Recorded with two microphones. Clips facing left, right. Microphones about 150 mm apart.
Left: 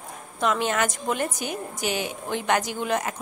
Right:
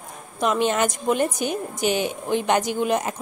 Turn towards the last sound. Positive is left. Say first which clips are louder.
# right 4 dB
turn(degrees=-20)  # may be behind; listen again after turning